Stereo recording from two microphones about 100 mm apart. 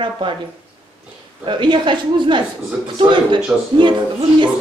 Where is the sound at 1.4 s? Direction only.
50° right (ahead or behind).